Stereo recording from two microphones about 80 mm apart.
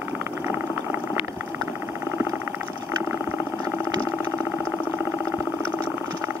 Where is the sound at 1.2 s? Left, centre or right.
Left.